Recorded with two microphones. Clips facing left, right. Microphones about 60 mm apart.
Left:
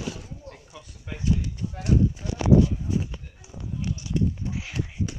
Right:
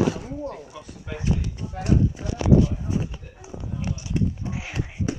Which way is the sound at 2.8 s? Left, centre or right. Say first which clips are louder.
Right 1 dB; centre.